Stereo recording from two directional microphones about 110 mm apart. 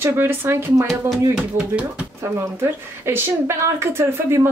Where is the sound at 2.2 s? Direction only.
25° right (ahead or behind).